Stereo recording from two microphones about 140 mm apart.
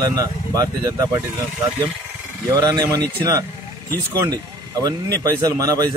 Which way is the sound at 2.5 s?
25° right (ahead or behind).